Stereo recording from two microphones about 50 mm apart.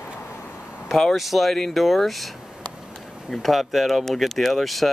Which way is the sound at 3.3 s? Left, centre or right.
Centre.